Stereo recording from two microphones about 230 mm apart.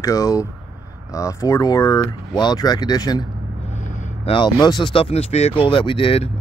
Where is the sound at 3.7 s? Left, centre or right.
Left.